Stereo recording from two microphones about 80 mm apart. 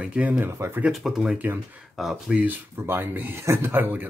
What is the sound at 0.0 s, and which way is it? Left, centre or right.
Speech, centre.